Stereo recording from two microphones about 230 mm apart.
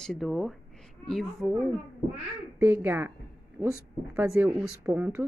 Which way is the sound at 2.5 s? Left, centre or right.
Centre.